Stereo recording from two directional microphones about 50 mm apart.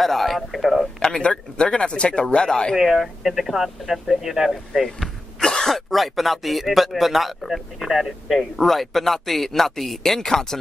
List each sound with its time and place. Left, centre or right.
0.0 s speech: centre
1.0 s a man's voice: centre
2.7 s speech: centre
5.0 s speech: centre